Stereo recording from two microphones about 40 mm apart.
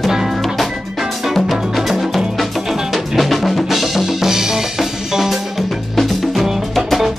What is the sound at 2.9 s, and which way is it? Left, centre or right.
Drum, centre.